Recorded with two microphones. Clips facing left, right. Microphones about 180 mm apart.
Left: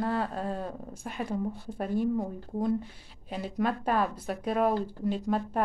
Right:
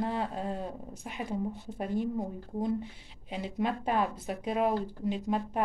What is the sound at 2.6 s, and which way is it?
Speech, 15° right (ahead or behind).